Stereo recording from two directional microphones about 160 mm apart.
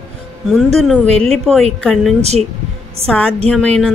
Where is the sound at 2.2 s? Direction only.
40° right (ahead or behind).